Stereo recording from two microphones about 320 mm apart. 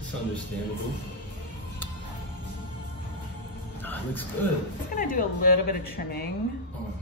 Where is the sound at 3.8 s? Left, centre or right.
Centre.